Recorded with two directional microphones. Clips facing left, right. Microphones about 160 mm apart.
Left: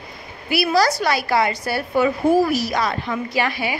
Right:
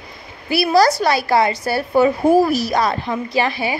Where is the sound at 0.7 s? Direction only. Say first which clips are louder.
Right 5 dB; 40° right (ahead or behind).